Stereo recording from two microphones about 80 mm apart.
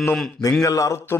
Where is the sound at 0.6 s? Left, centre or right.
Left.